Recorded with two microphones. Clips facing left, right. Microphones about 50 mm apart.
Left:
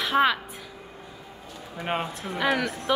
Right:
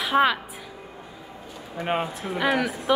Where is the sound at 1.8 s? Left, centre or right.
Centre.